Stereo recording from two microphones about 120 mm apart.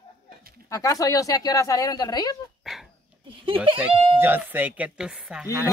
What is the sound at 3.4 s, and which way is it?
Speech, 45° right (ahead or behind).